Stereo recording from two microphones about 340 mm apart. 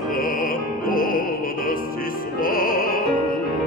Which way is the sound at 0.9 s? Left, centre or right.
Left.